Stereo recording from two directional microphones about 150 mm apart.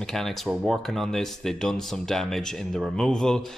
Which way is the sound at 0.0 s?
Centre (ahead or behind).